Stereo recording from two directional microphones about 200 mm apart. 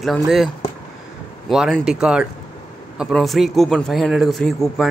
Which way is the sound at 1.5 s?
Centre (ahead or behind).